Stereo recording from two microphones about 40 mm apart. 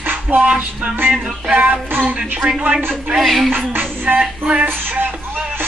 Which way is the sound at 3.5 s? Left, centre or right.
Right.